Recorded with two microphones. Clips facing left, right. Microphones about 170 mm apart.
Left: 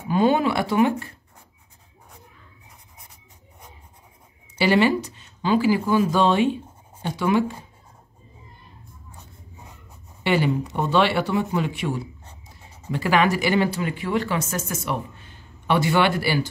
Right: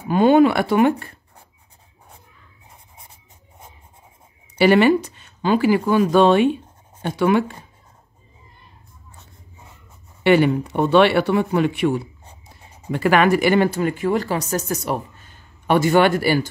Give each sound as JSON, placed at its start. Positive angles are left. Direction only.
{"t": 0.1, "sound": "speech", "side_deg": -60}
{"t": 4.6, "sound": "speech", "side_deg": -55}
{"t": 10.2, "sound": "speech", "side_deg": -60}